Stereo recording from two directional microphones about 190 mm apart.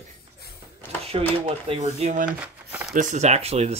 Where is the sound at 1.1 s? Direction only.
30° right (ahead or behind).